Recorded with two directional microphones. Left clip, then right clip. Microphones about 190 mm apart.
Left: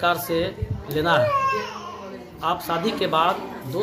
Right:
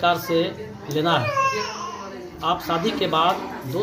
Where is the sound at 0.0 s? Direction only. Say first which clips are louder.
Right 2 dB; 10° left (ahead or behind).